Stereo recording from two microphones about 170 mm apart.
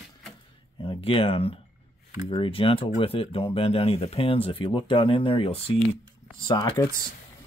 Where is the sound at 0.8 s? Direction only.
30° left (ahead or behind).